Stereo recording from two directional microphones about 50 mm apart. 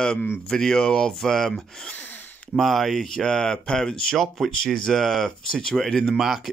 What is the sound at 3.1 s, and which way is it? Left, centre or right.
Speech, centre.